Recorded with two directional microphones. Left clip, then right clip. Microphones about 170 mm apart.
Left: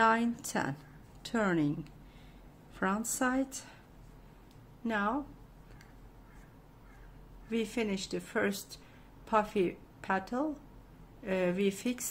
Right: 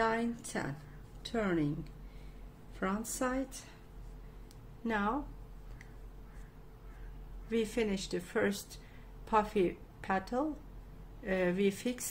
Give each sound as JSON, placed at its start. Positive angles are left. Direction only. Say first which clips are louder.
{"t": 0.0, "sound": "speech", "louder": "left 5 dB", "side_deg": 30}
{"t": 2.8, "sound": "a woman's voice", "louder": "left 3 dB", "side_deg": 20}
{"t": 4.8, "sound": "speech", "louder": "left 1 dB", "side_deg": 10}
{"t": 7.4, "sound": "a woman's voice", "louder": "right 1 dB", "side_deg": 10}